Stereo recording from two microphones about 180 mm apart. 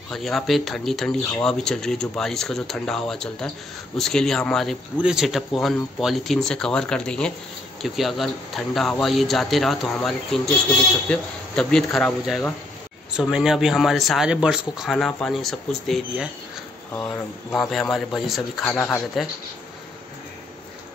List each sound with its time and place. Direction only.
0.1 s speech: centre (ahead or behind)
16.9 s speech: 10° left (ahead or behind)
17.6 s speech: centre (ahead or behind)
19.2 s speech: centre (ahead or behind)